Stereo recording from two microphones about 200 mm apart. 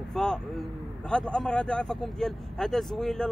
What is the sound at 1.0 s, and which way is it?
Speech, 5° left (ahead or behind).